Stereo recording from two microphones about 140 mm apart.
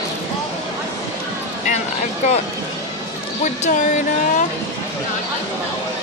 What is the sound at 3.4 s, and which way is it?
Speech, 60° left (ahead or behind).